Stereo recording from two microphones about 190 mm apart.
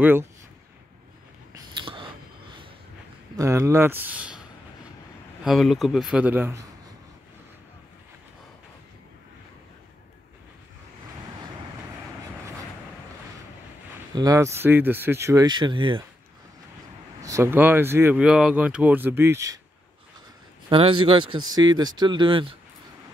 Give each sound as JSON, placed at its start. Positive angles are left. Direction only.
{"t": 0.0, "sound": "speech", "side_deg": -10}
{"t": 1.9, "sound": "a sound", "side_deg": -25}
{"t": 3.3, "sound": "a man's voice", "side_deg": -15}
{"t": 14.1, "sound": "speech", "side_deg": -20}
{"t": 17.2, "sound": "speech", "side_deg": -15}
{"t": 20.7, "sound": "speech", "side_deg": -25}